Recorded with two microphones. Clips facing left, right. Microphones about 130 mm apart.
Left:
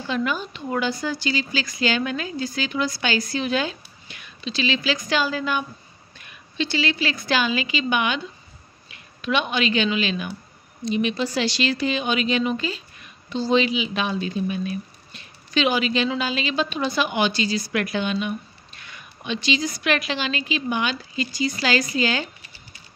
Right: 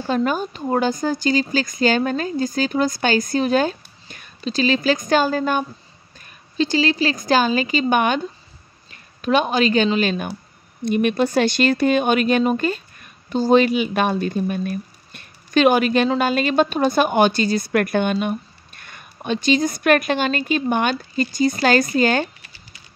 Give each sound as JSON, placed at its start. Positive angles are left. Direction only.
{"t": 0.0, "sound": "a woman's voice", "side_deg": -40}